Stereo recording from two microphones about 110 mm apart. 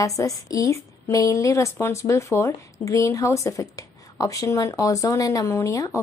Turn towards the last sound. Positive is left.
turn(degrees=30)  # may be behind; listen again after turning